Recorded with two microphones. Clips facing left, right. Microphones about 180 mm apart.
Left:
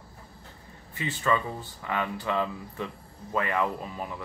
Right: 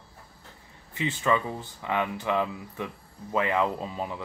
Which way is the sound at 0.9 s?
20° right (ahead or behind).